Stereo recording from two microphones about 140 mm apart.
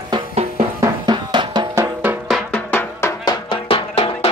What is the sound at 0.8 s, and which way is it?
Music, 30° right (ahead or behind).